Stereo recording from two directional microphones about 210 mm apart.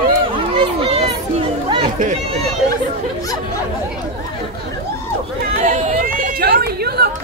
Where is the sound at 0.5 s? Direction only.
30° right (ahead or behind).